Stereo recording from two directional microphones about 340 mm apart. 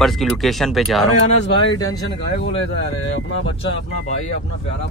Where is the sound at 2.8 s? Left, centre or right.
Left.